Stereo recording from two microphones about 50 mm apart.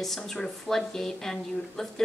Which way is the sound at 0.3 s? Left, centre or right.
Centre.